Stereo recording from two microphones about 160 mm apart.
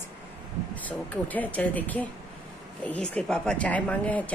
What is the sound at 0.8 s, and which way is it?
Speech, 10° left (ahead or behind).